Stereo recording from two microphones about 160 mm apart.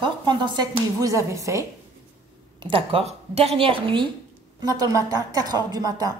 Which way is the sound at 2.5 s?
35° right (ahead or behind).